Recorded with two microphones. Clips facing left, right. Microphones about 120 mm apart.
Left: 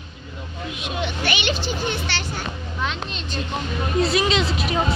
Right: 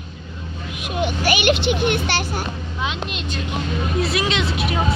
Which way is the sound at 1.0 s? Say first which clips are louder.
Right 7 dB; 45° right (ahead or behind).